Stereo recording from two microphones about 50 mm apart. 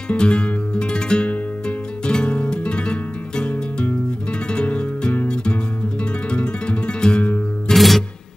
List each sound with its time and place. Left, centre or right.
0.1 s music: left
7.7 s music: centre